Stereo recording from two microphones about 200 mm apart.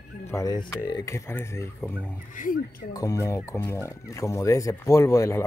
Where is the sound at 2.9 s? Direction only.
15° left (ahead or behind).